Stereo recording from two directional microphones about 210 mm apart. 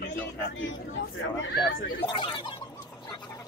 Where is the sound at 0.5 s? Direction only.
65° left (ahead or behind).